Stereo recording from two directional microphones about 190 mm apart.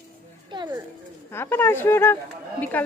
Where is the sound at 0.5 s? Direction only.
25° right (ahead or behind).